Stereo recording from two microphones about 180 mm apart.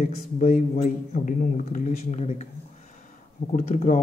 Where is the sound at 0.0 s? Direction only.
45° left (ahead or behind).